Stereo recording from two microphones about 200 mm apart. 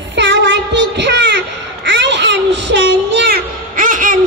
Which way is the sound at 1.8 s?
60° right (ahead or behind).